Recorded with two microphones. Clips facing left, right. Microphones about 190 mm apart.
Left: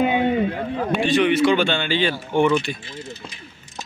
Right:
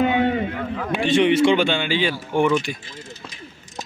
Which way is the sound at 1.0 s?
25° right (ahead or behind).